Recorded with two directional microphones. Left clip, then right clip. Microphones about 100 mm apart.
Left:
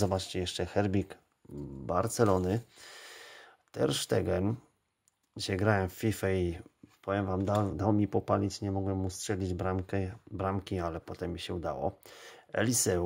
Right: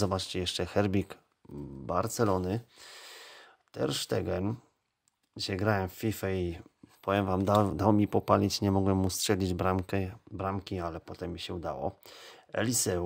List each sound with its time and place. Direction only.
0.0 s speech: 25° right (ahead or behind)
1.4 s dog: 35° right (ahead or behind)
1.9 s speech: 15° right (ahead or behind)
7.1 s speech: 40° right (ahead or behind)
10.3 s speech: 15° right (ahead or behind)